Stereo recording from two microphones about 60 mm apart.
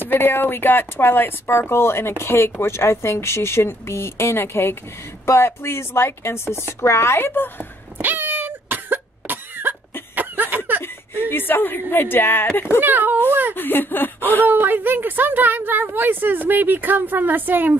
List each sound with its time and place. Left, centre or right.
0.0 s speech: left
8.0 s cough: right
10.1 s a sound: right
10.8 s speech: left
12.8 s a woman's voice: right
13.6 s speech: left
14.5 s a woman's voice: right